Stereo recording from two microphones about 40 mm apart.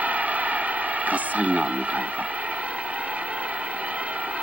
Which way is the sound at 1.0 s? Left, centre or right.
Right.